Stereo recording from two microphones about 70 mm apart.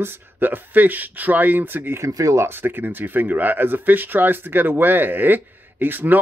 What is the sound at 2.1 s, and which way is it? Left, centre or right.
Speech, right.